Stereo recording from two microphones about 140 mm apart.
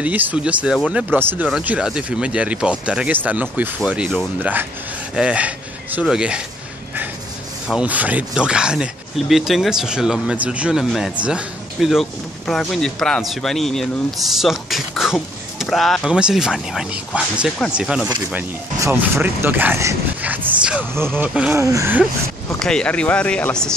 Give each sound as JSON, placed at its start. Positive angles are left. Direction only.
{"t": 0.0, "sound": "speech", "side_deg": -10}
{"t": 7.7, "sound": "speech", "side_deg": -10}
{"t": 18.9, "sound": "speech", "side_deg": -15}
{"t": 21.5, "sound": "speech", "side_deg": -20}
{"t": 22.6, "sound": "speech", "side_deg": 5}